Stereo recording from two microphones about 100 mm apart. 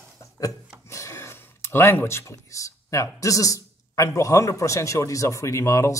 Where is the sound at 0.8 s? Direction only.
30° left (ahead or behind).